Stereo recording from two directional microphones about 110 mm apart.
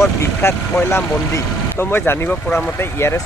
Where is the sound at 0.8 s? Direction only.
20° left (ahead or behind).